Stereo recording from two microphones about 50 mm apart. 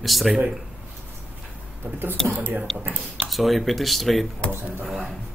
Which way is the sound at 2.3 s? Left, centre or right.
Right.